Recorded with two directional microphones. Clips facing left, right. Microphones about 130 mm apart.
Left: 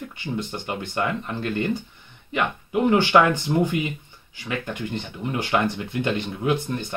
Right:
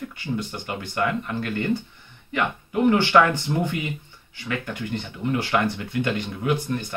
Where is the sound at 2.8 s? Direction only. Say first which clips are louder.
Even; 20° left (ahead or behind).